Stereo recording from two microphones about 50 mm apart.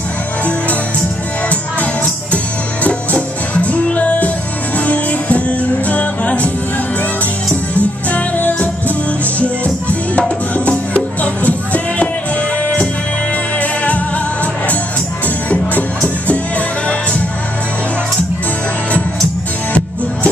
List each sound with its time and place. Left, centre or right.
2.3 s music: left
7.7 s music: left
13.6 s music: left
15.2 s music: left